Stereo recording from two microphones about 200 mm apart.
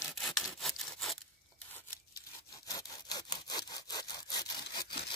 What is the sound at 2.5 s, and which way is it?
Sawing, 15° left (ahead or behind).